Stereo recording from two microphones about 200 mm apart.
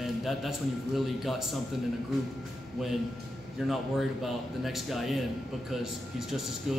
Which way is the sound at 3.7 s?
Centre (ahead or behind).